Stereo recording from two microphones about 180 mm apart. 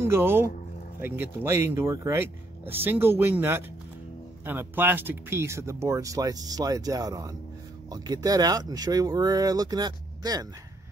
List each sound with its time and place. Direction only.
0.0 s speech: 15° right (ahead or behind)